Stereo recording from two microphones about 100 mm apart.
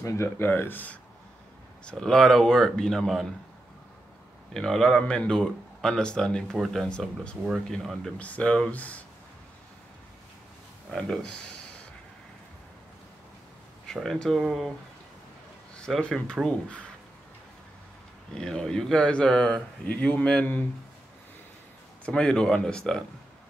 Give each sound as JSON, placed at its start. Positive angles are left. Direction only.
{"t": 0.0, "sound": "speech", "side_deg": 30}
{"t": 1.9, "sound": "speech", "side_deg": 5}
{"t": 4.6, "sound": "speech", "side_deg": 5}
{"t": 8.2, "sound": "speech", "side_deg": 10}
{"t": 10.9, "sound": "speech", "side_deg": 5}
{"t": 14.0, "sound": "speech", "side_deg": 5}
{"t": 15.8, "sound": "speech", "side_deg": 5}
{"t": 18.3, "sound": "speech", "side_deg": 5}
{"t": 22.0, "sound": "speech", "side_deg": 10}